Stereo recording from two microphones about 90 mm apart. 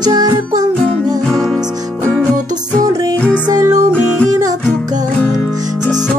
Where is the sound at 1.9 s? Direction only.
15° left (ahead or behind).